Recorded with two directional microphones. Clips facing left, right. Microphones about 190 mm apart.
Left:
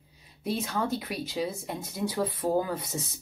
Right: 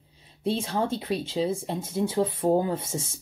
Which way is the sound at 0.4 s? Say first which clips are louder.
Right 3 dB; 30° right (ahead or behind).